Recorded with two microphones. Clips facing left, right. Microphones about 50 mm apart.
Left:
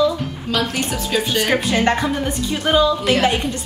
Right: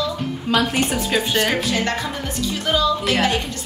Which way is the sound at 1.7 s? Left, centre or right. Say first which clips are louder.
Left 5 dB; left.